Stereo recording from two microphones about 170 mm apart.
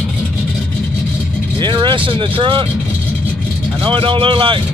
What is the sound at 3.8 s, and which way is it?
Speech, 30° right (ahead or behind).